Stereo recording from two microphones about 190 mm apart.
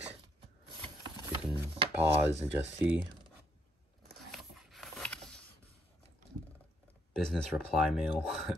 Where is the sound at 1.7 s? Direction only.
30° right (ahead or behind).